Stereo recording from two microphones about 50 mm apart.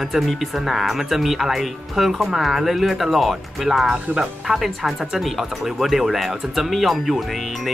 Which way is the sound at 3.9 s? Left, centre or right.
Right.